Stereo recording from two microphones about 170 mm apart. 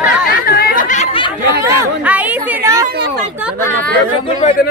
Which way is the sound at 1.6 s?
10° right (ahead or behind).